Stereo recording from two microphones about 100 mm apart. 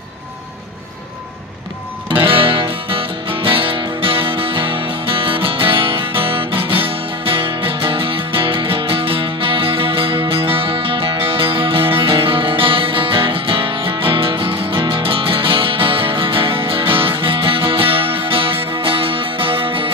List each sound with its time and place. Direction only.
2.0 s music: 60° right (ahead or behind)